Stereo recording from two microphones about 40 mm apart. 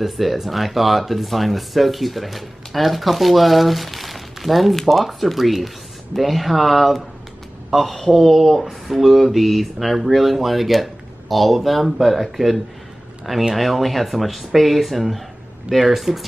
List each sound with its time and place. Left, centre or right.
0.0 s speech: centre